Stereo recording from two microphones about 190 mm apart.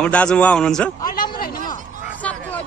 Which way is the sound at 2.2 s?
10° left (ahead or behind).